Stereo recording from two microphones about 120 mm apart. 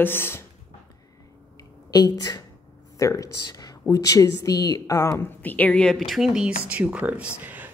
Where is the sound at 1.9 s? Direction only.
30° left (ahead or behind).